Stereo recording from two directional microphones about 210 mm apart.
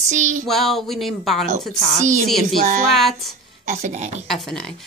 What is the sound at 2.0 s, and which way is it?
Speech, 35° right (ahead or behind).